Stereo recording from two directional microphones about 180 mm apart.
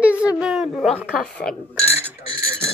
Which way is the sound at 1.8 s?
35° left (ahead or behind).